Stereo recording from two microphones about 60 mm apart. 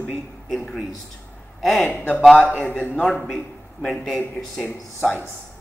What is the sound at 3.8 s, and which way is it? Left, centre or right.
Speech, centre.